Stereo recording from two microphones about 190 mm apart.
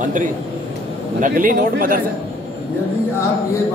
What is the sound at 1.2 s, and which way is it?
Speech, 45° right (ahead or behind).